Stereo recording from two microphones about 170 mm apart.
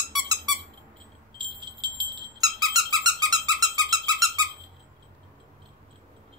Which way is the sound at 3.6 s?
25° right (ahead or behind).